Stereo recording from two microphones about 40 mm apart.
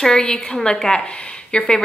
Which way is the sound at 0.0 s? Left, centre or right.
Centre.